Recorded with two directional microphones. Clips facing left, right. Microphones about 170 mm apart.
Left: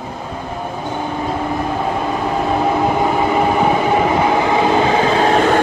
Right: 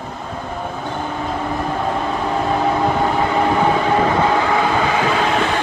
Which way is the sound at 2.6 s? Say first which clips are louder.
Left 2 dB; 5° left (ahead or behind).